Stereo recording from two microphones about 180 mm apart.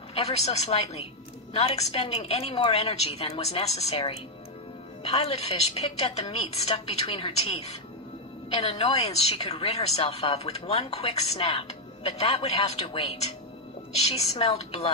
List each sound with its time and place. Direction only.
0.1 s a woman's voice: 35° left (ahead or behind)